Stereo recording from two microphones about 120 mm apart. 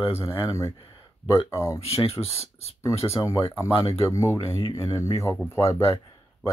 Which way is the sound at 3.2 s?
25° left (ahead or behind).